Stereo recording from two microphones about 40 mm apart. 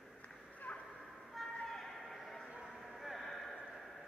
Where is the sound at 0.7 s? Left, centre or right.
Left.